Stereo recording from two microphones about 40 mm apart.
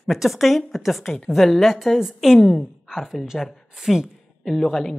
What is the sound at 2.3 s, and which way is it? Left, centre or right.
Speech, centre.